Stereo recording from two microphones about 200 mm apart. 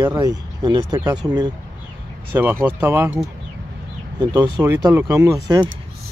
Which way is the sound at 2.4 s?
10° right (ahead or behind).